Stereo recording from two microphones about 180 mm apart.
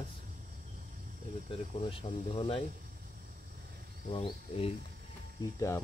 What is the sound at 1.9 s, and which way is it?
Speech, 30° left (ahead or behind).